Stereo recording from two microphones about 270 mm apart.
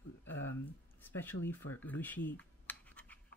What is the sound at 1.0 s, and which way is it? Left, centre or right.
Speech, centre.